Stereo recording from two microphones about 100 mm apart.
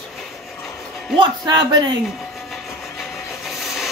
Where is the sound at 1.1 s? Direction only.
45° right (ahead or behind).